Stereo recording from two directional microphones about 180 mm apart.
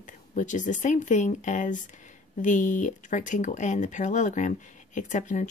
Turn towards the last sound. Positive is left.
turn(degrees=45)  # may be behind; listen again after turning